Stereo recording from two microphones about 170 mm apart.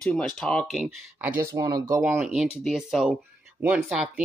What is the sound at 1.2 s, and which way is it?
Speech, 15° right (ahead or behind).